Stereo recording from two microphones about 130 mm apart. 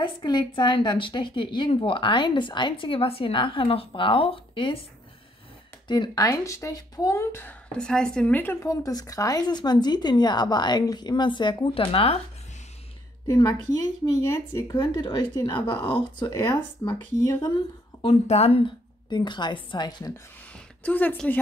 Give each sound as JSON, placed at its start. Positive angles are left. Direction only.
{"t": 0.0, "sound": "speech", "side_deg": 35}
{"t": 5.9, "sound": "speech", "side_deg": 30}
{"t": 7.7, "sound": "a woman's voice", "side_deg": 5}
{"t": 8.6, "sound": "speech", "side_deg": 25}
{"t": 14.0, "sound": "speech", "side_deg": 20}
{"t": 14.8, "sound": "speech", "side_deg": 35}
{"t": 18.0, "sound": "speech", "side_deg": 55}
{"t": 19.0, "sound": "speech", "side_deg": 35}
{"t": 20.5, "sound": "a woman's voice", "side_deg": 10}